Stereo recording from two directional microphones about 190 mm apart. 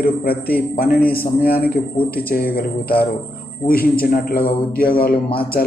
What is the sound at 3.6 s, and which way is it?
Mantra, 50° left (ahead or behind).